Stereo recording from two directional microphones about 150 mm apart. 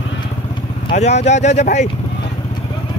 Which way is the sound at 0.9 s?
50° left (ahead or behind).